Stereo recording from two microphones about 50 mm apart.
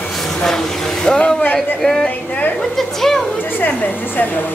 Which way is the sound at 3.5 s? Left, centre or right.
Left.